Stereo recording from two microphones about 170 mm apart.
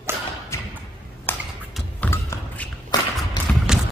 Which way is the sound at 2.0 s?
10° left (ahead or behind).